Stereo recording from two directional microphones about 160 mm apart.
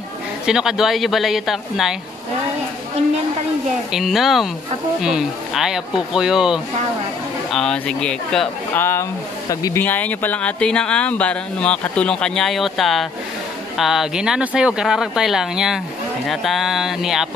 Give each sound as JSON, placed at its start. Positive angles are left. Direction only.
{"t": 0.5, "sound": "speech", "side_deg": -5}
{"t": 3.9, "sound": "speech", "side_deg": 0}
{"t": 8.7, "sound": "speech", "side_deg": 15}
{"t": 9.8, "sound": "speech", "side_deg": 10}